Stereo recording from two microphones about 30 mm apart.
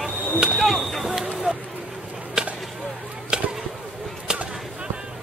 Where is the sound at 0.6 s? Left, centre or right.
Centre.